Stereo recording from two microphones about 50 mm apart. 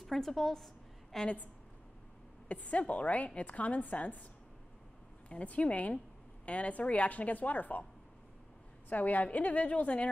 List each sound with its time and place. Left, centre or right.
0.0 s a woman's voice: centre
1.1 s a woman's voice: centre
2.4 s a woman's voice: left
5.3 s a woman's voice: left
8.8 s speech: left